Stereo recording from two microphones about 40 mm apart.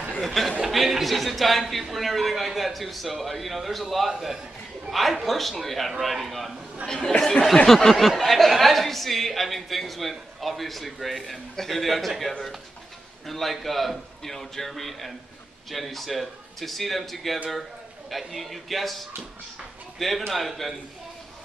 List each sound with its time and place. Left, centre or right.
0.2 s speech: centre
6.9 s speech: centre
7.6 s speech: centre